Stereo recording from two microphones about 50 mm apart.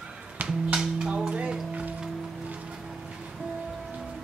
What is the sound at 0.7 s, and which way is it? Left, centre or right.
Music, centre.